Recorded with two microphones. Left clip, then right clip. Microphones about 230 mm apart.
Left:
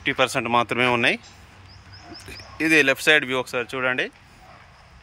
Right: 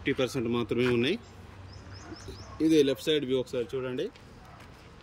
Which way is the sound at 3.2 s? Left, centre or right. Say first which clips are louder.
Left 5 dB; left.